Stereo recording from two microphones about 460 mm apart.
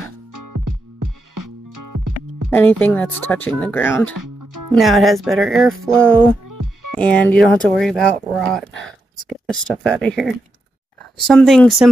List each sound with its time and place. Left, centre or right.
0.3 s music: right
2.5 s speech: centre
4.2 s music: right
4.7 s speech: centre
6.4 s music: right
7.0 s speech: centre